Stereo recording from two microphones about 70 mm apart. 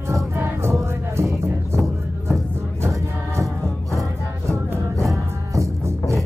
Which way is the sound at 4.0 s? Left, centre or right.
Right.